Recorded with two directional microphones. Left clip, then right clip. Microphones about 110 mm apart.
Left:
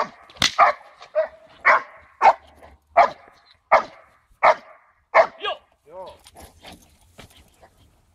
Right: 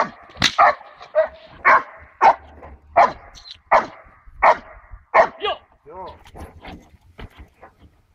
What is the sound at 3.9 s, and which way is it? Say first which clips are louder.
Dog: right 5 dB; 30° left (ahead or behind).